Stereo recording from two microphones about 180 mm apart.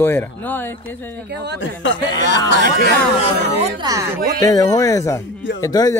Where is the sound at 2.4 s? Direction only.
80° left.